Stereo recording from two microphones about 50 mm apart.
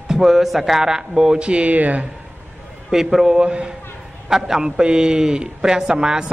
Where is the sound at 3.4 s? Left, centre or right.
Centre.